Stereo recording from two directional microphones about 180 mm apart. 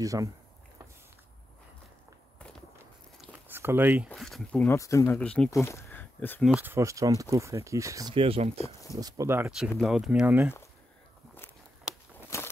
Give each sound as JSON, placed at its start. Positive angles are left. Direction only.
{"t": 0.0, "sound": "speech", "side_deg": -20}
{"t": 2.3, "sound": "walk", "side_deg": 5}
{"t": 3.2, "sound": "a sound", "side_deg": -10}
{"t": 4.1, "sound": "speech", "side_deg": 0}
{"t": 4.7, "sound": "speech", "side_deg": 15}
{"t": 6.4, "sound": "speech", "side_deg": -10}
{"t": 8.1, "sound": "speech", "side_deg": -30}
{"t": 8.9, "sound": "speech", "side_deg": -20}
{"t": 9.8, "sound": "speech", "side_deg": -5}
{"t": 11.9, "sound": "walk", "side_deg": -5}
{"t": 12.3, "sound": "walk", "side_deg": 15}